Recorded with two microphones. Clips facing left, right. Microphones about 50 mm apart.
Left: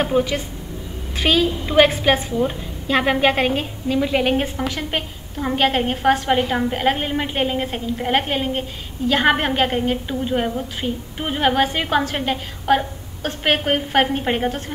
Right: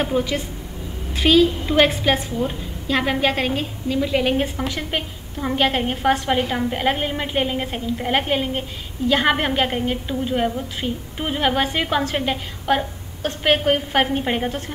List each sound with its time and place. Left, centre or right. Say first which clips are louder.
0.0 s a woman's voice: left 2 dB; centre
2.4 s a woman's voice: left 2 dB; centre